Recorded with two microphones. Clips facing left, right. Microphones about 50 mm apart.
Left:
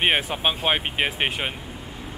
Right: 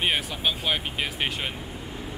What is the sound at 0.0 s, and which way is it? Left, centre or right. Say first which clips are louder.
Speech: left 4 dB; left.